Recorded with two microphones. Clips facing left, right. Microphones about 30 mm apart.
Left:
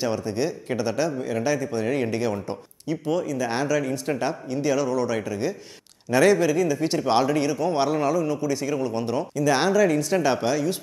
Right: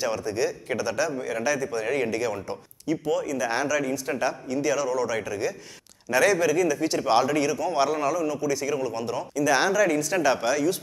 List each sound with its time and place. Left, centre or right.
0.0 s a man's voice: left
6.1 s a man's voice: left